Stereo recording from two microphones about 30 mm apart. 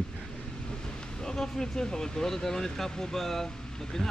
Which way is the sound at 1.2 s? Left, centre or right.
Centre.